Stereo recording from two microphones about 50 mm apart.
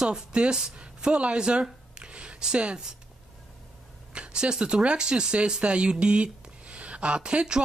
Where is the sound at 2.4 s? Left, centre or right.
Right.